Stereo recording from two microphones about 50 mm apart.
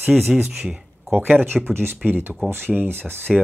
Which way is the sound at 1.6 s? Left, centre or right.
Right.